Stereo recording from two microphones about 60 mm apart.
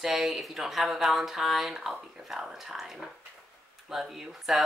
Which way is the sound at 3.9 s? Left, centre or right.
Centre.